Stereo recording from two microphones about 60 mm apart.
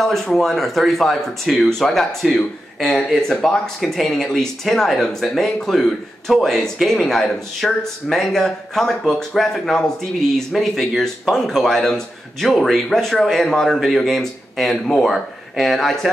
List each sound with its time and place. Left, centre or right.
0.0 s speech: centre